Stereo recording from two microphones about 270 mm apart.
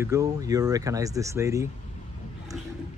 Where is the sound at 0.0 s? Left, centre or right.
Centre.